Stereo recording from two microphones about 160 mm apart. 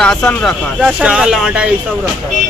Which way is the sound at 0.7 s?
5° right (ahead or behind).